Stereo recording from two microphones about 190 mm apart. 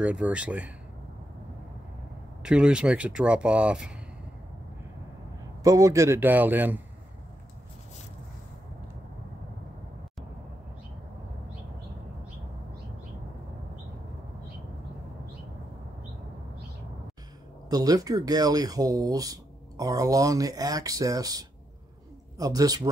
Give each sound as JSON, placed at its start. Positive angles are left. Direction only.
{"t": 0.0, "sound": "a man's voice", "side_deg": -5}
{"t": 2.4, "sound": "speech", "side_deg": -5}
{"t": 5.6, "sound": "a man's voice", "side_deg": -15}
{"t": 17.6, "sound": "speech", "side_deg": -20}